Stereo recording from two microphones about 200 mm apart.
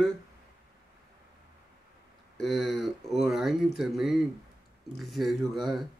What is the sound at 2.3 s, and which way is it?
Speech, centre (ahead or behind).